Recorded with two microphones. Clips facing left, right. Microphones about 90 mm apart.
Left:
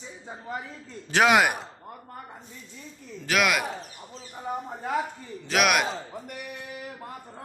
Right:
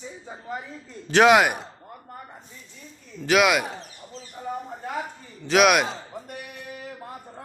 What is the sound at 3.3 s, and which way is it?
Speech, 5° right (ahead or behind).